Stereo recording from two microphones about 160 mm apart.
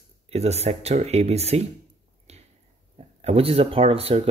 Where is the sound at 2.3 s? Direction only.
40° right (ahead or behind).